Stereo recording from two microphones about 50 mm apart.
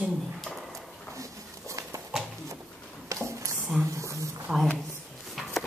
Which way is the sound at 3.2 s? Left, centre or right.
Right.